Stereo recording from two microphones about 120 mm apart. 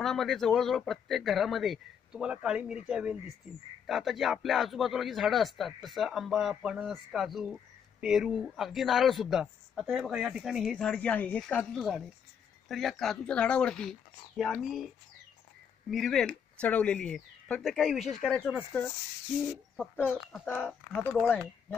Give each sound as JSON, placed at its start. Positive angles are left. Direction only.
{"t": 0.0, "sound": "speech", "side_deg": 0}
{"t": 15.9, "sound": "speech", "side_deg": 0}
{"t": 20.4, "sound": "speech", "side_deg": 15}
{"t": 21.1, "sound": "speech", "side_deg": -5}